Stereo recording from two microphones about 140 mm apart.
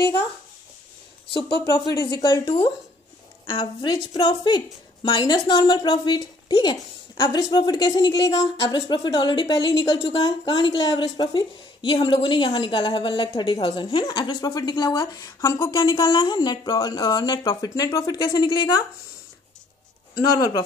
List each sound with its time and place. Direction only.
1.2 s speech: 40° left (ahead or behind)
2.2 s a woman's voice: 25° left (ahead or behind)
20.2 s a woman's voice: 25° left (ahead or behind)